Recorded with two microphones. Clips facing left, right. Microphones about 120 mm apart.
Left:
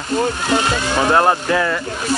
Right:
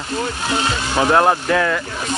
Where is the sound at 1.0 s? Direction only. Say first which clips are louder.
Right 1 dB; centre (ahead or behind).